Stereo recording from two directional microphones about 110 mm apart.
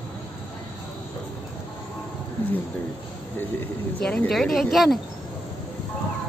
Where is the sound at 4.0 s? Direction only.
10° left (ahead or behind).